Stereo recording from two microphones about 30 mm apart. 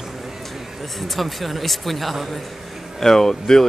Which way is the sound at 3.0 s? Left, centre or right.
Centre.